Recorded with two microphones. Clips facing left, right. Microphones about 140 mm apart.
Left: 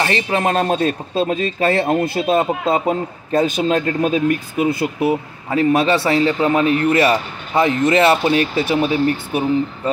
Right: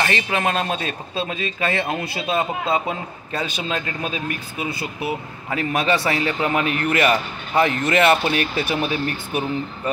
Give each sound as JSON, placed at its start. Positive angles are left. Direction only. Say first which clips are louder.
{"t": 0.0, "sound": "speech", "louder": "left 4 dB", "side_deg": 30}
{"t": 5.5, "sound": "a man's voice", "louder": "left 6 dB", "side_deg": 30}